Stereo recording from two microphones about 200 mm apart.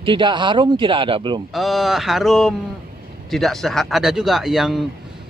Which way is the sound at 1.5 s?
Centre (ahead or behind).